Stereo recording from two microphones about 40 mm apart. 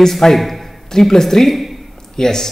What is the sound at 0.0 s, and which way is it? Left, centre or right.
A man's voice, centre.